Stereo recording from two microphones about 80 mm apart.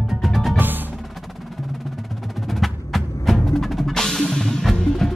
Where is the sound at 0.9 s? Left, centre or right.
Centre.